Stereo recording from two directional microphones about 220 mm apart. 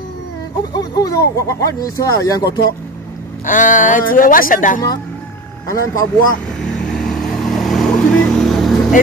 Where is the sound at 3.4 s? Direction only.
35° left (ahead or behind).